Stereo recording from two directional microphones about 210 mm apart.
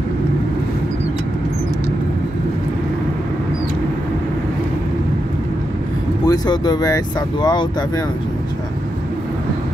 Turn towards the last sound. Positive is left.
turn(degrees=20)  # may be behind; listen again after turning